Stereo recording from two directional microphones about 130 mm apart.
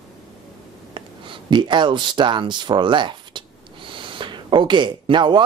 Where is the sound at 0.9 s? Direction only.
40° right (ahead or behind).